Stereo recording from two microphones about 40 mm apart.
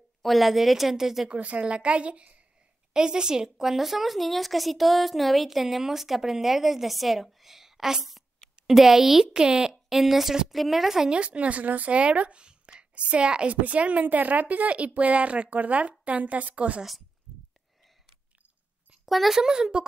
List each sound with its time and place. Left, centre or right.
0.2 s a woman's voice: centre
1.3 s a woman's voice: right
2.9 s a woman's voice: centre
9.9 s a woman's voice: centre
11.1 s a woman's voice: right
12.0 s speech: right
13.5 s a woman's voice: right
19.0 s a child's voice: centre
19.3 s a child's voice: centre